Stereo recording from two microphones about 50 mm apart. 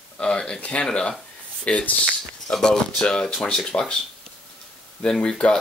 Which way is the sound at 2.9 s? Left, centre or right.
Left.